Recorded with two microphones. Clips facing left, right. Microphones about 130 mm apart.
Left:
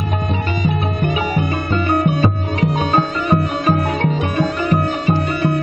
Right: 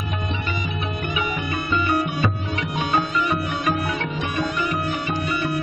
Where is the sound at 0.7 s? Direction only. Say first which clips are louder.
Left 8 dB; 40° left (ahead or behind).